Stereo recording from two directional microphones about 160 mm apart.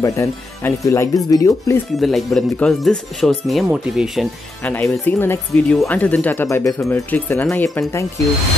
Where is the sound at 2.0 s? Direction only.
Centre (ahead or behind).